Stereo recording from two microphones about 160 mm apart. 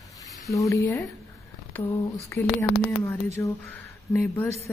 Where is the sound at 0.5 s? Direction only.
20° left (ahead or behind).